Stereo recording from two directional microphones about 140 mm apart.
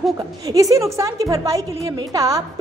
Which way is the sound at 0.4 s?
25° right (ahead or behind).